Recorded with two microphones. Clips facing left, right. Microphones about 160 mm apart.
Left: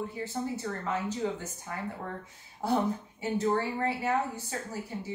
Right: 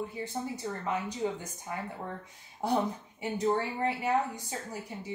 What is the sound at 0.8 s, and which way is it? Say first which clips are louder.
A woman's voice: even; 15° right (ahead or behind).